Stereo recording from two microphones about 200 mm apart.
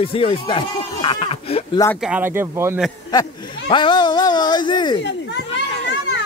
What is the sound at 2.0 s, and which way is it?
Speech, 10° right (ahead or behind).